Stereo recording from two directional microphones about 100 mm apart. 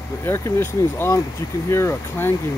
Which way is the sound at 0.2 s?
25° left (ahead or behind).